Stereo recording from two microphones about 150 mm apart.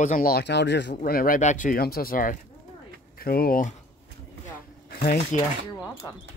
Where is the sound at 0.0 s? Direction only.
70° left (ahead or behind).